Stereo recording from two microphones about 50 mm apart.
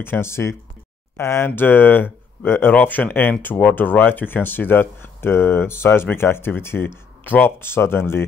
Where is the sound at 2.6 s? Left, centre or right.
Left.